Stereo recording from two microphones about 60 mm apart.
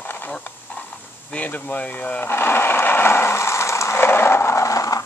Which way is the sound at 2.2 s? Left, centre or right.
Left.